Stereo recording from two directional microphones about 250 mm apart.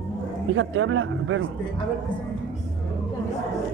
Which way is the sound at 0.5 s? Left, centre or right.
Right.